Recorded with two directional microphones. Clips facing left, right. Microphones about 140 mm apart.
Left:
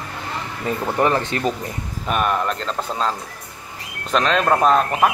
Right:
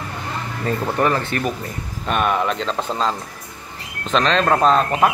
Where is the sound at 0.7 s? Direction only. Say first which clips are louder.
Even; 20° left (ahead or behind).